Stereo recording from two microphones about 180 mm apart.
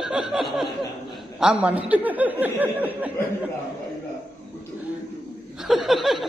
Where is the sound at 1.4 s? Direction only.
5° right (ahead or behind).